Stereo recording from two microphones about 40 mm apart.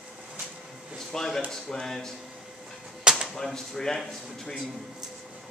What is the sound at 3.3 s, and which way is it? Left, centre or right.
Speech, centre.